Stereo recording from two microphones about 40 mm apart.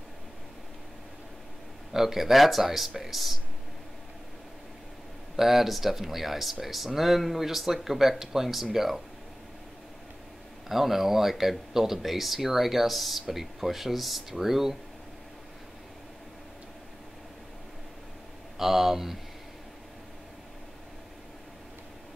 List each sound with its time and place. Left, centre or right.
1.9 s speech: centre
5.3 s speech: centre
10.7 s speech: centre
18.6 s speech: centre